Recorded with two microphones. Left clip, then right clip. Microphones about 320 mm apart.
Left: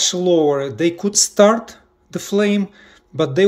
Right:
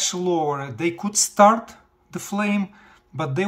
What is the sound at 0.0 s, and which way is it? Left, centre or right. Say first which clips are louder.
Speech: left 7 dB; centre.